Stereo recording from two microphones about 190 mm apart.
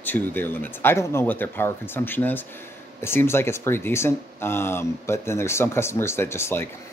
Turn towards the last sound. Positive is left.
turn(degrees=10)  # may be behind; listen again after turning